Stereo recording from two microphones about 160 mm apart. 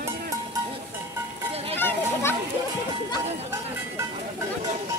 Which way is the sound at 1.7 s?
15° left (ahead or behind).